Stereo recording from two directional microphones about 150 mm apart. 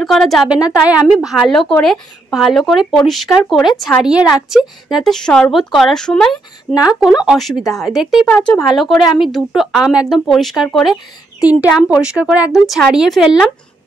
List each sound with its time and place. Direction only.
0.0 s a woman's voice: centre (ahead or behind)
8.4 s speech: 15° left (ahead or behind)
9.2 s a woman's voice: centre (ahead or behind)